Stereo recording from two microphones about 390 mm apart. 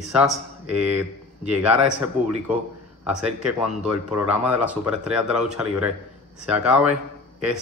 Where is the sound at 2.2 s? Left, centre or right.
Centre.